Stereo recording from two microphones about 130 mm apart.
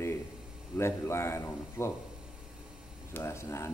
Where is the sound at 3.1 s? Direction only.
20° left (ahead or behind).